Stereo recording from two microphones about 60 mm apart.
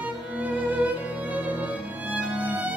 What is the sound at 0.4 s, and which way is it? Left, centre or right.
Music, right.